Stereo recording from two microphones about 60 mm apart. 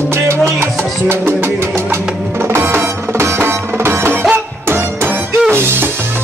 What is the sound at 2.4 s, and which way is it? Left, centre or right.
Music, right.